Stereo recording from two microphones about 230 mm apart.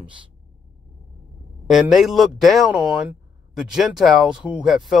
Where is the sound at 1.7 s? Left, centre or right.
Centre.